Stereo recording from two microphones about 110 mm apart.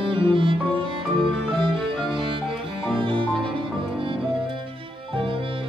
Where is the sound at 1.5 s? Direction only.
50° right (ahead or behind).